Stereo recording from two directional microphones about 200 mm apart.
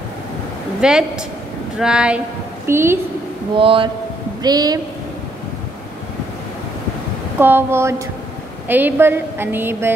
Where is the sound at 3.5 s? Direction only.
25° right (ahead or behind).